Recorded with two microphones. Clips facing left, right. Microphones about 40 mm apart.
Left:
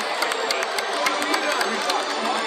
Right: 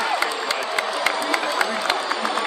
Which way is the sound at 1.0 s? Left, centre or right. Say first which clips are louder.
Left 2 dB; right.